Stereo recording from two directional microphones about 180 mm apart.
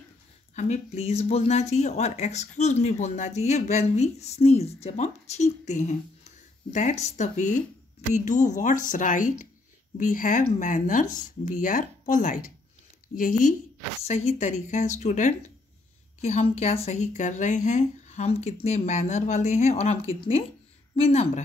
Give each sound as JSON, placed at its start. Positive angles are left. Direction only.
{"t": 0.6, "sound": "speech", "side_deg": 35}
{"t": 14.0, "sound": "speech", "side_deg": 35}